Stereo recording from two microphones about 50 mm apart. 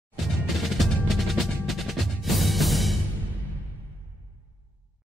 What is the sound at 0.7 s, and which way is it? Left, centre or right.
Music, centre.